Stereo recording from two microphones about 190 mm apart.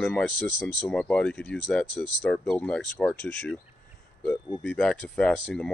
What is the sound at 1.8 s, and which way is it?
Speech, 25° right (ahead or behind).